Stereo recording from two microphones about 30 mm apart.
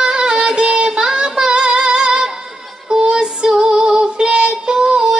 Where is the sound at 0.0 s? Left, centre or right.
Right.